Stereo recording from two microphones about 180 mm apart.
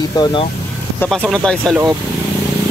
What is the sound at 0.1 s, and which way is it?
Speech, 25° left (ahead or behind).